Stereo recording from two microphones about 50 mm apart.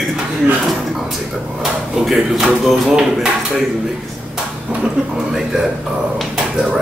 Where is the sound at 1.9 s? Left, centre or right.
Centre.